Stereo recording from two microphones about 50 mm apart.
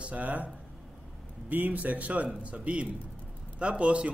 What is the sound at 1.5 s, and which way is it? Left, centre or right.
Speech, right.